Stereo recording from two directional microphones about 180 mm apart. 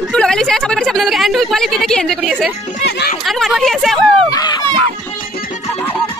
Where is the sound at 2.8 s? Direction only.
65° left (ahead or behind).